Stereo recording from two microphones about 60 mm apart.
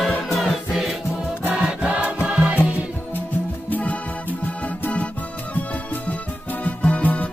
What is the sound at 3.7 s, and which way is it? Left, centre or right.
Music, left.